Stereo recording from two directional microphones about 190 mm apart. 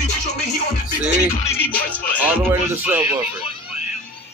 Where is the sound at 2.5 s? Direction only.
10° right (ahead or behind).